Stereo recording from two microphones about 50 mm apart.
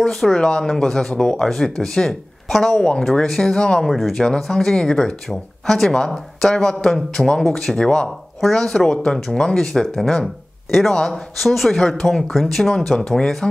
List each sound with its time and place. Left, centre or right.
0.0 s speech: centre
4.1 s speech: centre